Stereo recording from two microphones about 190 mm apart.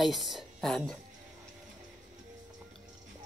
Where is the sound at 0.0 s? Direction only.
Centre (ahead or behind).